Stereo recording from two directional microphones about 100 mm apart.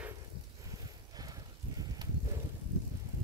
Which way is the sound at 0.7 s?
40° right (ahead or behind).